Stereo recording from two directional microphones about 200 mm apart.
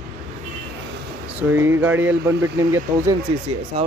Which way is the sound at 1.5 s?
10° right (ahead or behind).